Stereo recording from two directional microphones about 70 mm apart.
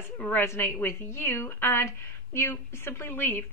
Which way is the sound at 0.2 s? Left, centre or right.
Left.